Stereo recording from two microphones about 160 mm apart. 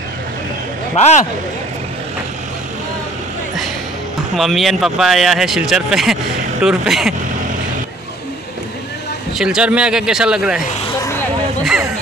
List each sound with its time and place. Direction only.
0.9 s speech: 45° left (ahead or behind)
4.4 s speech: centre (ahead or behind)
9.4 s speech: 5° right (ahead or behind)